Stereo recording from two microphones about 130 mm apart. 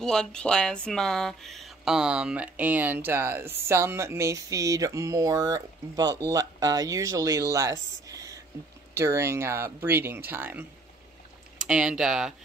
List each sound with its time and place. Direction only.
0.0 s speech: 5° left (ahead or behind); by 10.6 s 15° right (ahead or behind)
11.6 s speech: 5° right (ahead or behind)